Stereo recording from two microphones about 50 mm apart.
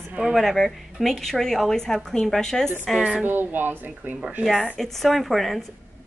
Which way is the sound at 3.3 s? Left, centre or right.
Right.